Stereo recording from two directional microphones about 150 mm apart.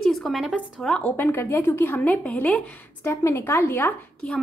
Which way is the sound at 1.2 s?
15° left (ahead or behind).